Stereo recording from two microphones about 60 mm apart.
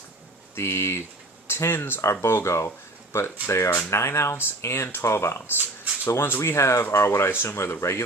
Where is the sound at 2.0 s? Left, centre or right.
Left.